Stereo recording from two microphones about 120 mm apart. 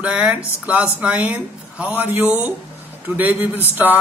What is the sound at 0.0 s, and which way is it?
A man's voice, 10° right (ahead or behind).